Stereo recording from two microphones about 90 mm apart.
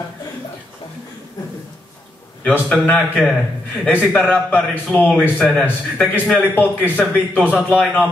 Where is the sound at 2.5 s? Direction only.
15° left (ahead or behind).